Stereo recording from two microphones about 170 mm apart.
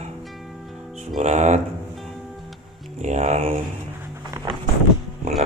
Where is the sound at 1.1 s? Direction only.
45° right (ahead or behind).